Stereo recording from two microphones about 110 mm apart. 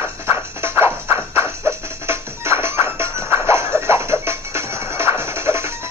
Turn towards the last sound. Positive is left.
turn(degrees=-25)  # may be behind; listen again after turning